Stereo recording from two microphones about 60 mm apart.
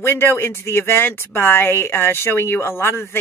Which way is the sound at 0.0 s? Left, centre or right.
Left.